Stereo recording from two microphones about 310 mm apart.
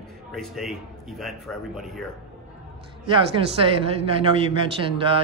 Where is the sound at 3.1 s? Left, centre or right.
Centre.